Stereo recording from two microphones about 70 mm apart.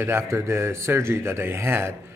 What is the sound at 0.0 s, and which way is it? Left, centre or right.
A man's voice, right.